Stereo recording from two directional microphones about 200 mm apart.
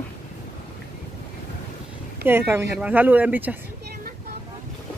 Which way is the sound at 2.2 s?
10° right (ahead or behind).